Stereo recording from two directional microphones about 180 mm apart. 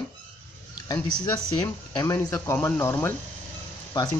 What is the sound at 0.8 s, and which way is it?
Speech, 20° left (ahead or behind).